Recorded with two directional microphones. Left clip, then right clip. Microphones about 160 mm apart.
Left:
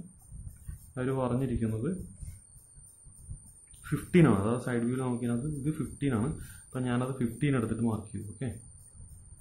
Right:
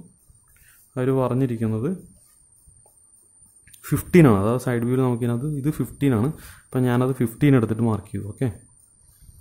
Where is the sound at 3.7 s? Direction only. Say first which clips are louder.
Right 9 dB; 70° right (ahead or behind).